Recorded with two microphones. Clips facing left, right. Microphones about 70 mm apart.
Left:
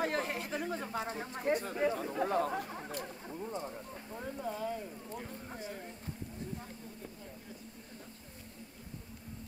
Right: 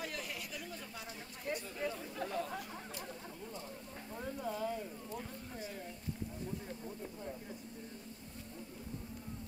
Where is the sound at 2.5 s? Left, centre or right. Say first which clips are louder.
Left 6 dB; left.